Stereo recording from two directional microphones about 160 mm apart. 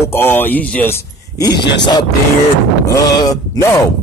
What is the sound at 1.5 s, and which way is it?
Speech, 90° left.